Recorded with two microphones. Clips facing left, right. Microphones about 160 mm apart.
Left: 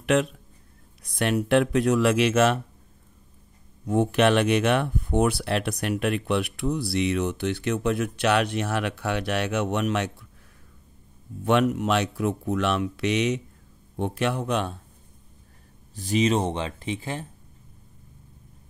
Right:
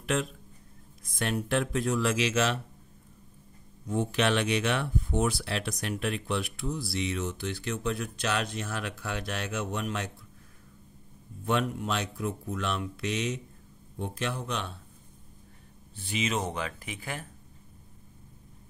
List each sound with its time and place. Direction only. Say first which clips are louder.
0.0 s speech: left 8 dB; 70° left (ahead or behind); by 2.6 s 50° left (ahead or behind)
3.8 s speech: left 7 dB; 60° left (ahead or behind)
11.4 s speech: left 7 dB; 75° left (ahead or behind); by 14.8 s 50° left (ahead or behind)
16.0 s speech: left 8 dB; 40° left (ahead or behind)